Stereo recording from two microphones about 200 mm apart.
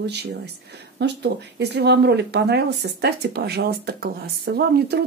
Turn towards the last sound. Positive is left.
turn(degrees=-55)  # may be behind; listen again after turning